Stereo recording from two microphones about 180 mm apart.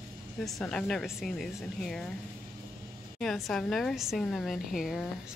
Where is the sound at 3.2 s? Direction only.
Centre (ahead or behind).